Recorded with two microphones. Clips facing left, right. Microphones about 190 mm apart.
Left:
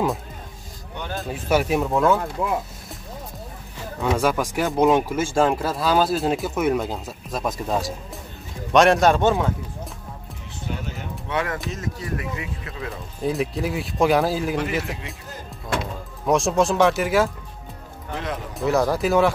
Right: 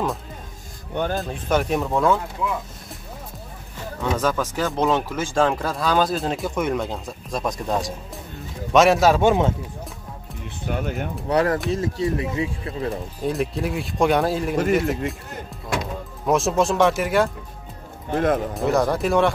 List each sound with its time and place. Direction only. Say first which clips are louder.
1.1 s speech: left 4 dB; 5° left (ahead or behind)
4.2 s speech: even; 10° left (ahead or behind); by 9.3 s 5° right (ahead or behind)
10.7 s speech: right 6 dB; 55° right (ahead or behind)
11.2 s speech: right 6 dB; 40° right (ahead or behind)
11.7 s speech: right 7 dB; 30° right (ahead or behind)
13.2 s speech: left 1 dB; centre (ahead or behind)
18.1 s speech: right 9 dB; 50° right (ahead or behind)
18.5 s speech: even; centre (ahead or behind)